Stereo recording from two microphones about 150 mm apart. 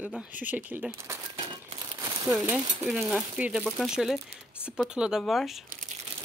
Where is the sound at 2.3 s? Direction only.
Centre (ahead or behind).